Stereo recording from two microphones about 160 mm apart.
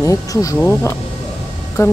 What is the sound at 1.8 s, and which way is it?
Music, 20° left (ahead or behind).